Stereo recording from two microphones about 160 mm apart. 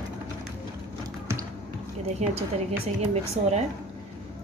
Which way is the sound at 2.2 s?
45° right (ahead or behind).